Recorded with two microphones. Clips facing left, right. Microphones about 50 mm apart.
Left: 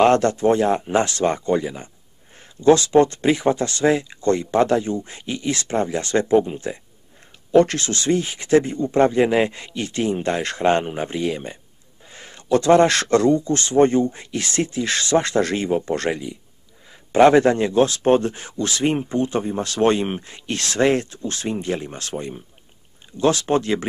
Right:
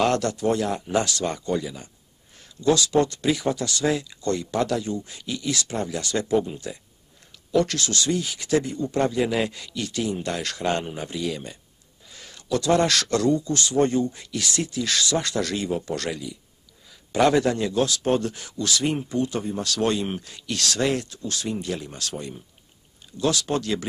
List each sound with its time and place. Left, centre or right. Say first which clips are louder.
0.0 s speech: left 7 dB; left